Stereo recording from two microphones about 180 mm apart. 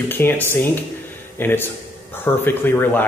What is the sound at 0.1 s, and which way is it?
Speech, 10° left (ahead or behind).